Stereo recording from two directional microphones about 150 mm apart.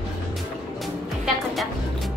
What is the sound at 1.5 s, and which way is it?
Music, centre (ahead or behind).